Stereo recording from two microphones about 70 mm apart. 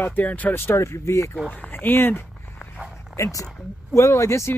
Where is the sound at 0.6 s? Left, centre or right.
Left.